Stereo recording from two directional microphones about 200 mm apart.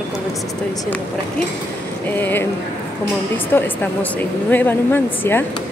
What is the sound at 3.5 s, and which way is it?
Speech, 10° left (ahead or behind).